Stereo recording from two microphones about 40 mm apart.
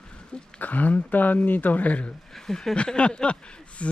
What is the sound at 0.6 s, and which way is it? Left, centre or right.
Speech, left.